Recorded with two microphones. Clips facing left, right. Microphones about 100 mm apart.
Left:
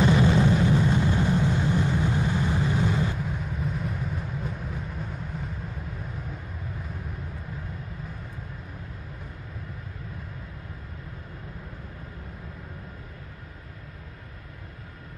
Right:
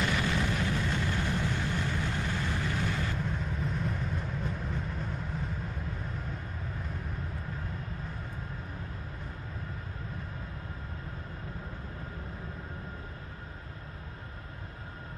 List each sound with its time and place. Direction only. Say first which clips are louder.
0.0 s vehicle: left 10 dB; 25° left (ahead or behind)
3.2 s music: left 2 dB; 5° left (ahead or behind)
5.3 s vehicle: left 2 dB; 5° left (ahead or behind)